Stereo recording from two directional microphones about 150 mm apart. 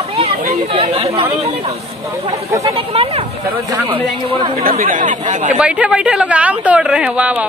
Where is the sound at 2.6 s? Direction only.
40° right (ahead or behind).